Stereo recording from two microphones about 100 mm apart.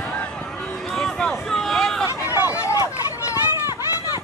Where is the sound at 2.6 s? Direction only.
30° left (ahead or behind).